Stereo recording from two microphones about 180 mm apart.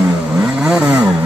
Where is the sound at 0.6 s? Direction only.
5° right (ahead or behind).